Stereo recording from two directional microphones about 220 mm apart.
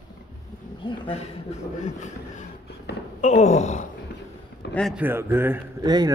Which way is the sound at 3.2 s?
30° left (ahead or behind).